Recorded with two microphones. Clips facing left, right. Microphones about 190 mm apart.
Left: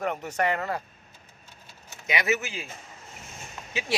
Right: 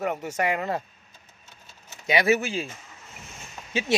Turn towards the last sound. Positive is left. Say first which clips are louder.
# right 5 dB
turn(degrees=-25)  # may be behind; listen again after turning